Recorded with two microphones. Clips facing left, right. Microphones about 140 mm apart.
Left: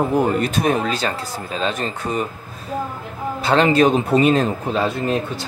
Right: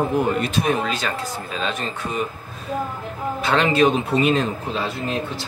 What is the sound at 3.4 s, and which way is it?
Speech, 35° left (ahead or behind).